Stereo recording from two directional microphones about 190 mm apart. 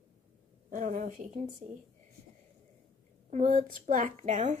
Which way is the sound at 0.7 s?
45° right (ahead or behind).